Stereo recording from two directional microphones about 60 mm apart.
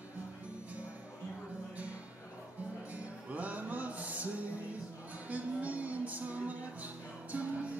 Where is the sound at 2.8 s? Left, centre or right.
Right.